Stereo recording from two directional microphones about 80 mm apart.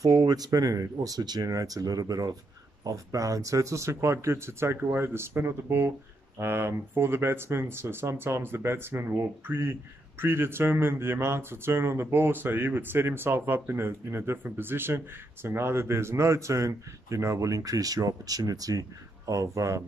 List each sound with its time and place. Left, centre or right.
0.2 s speech: right